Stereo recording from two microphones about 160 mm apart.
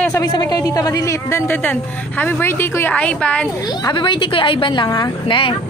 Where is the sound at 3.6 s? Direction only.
25° left (ahead or behind).